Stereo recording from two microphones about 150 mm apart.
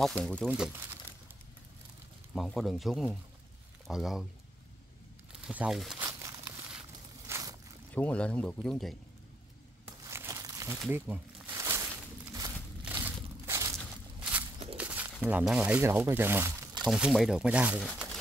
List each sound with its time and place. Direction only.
0.0 s speech: centre (ahead or behind)
2.3 s speech: centre (ahead or behind)
5.5 s speech: 5° right (ahead or behind)
6.0 s crumpling: 20° right (ahead or behind)
7.2 s a sound: 20° right (ahead or behind)
7.9 s speech: 10° left (ahead or behind)
10.0 s crumpling: 20° right (ahead or behind)
10.9 s speech: 15° right (ahead or behind)
11.5 s a sound: 20° right (ahead or behind)
12.8 s crushing: 10° right (ahead or behind)
14.8 s a sound: 10° right (ahead or behind)
15.2 s speech: 10° right (ahead or behind)
16.8 s speech: centre (ahead or behind)